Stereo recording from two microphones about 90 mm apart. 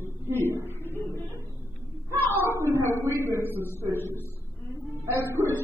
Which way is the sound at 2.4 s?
30° right (ahead or behind).